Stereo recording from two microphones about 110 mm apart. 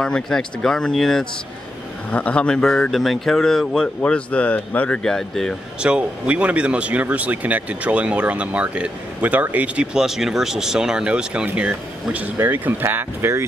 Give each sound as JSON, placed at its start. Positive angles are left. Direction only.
{"t": 0.0, "sound": "a man's voice", "side_deg": 5}
{"t": 5.8, "sound": "speech", "side_deg": -10}